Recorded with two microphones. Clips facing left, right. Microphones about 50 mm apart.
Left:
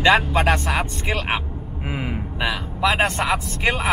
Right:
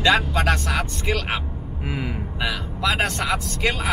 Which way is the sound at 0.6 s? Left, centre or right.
Centre.